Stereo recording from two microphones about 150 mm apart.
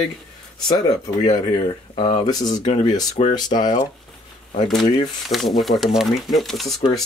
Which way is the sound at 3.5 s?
40° left (ahead or behind).